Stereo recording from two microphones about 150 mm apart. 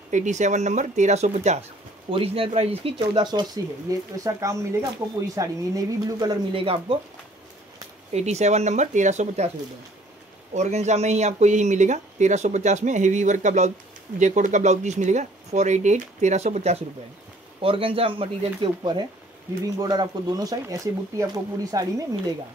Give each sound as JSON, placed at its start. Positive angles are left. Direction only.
{"t": 0.1, "sound": "speech", "side_deg": -55}
{"t": 2.0, "sound": "speech", "side_deg": -35}
{"t": 6.5, "sound": "speech", "side_deg": -35}
{"t": 8.1, "sound": "speech", "side_deg": -45}
{"t": 10.5, "sound": "speech", "side_deg": -50}
{"t": 17.6, "sound": "speech", "side_deg": -35}